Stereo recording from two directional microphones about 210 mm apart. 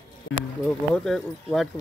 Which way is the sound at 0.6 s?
Centre (ahead or behind).